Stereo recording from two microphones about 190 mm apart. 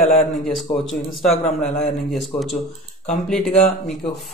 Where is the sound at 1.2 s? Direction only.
35° left (ahead or behind).